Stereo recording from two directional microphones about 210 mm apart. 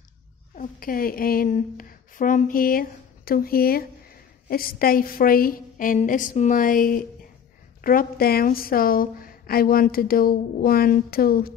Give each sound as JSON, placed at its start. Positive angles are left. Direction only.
{"t": 0.6, "sound": "a woman's voice", "side_deg": 40}